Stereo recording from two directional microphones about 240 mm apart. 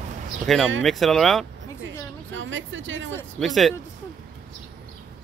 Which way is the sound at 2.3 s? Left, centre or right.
Right.